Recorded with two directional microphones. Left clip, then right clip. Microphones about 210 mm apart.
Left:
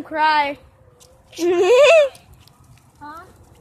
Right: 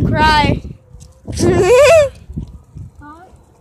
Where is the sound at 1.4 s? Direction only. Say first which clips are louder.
Right 4 dB; centre (ahead or behind).